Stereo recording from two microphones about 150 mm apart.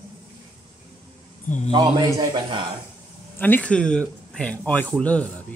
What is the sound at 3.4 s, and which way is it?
Speech, 10° left (ahead or behind).